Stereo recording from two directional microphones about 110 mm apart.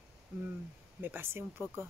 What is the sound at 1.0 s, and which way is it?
Speech, 20° right (ahead or behind).